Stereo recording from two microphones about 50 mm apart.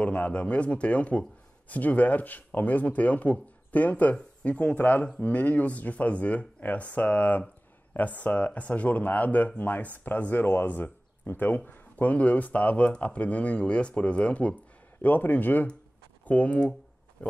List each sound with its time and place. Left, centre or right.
0.0 s speech: left